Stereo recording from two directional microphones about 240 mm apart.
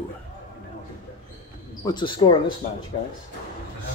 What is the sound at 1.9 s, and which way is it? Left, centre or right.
Speech, centre.